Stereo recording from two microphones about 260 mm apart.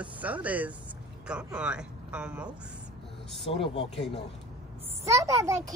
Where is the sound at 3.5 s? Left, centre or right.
Left.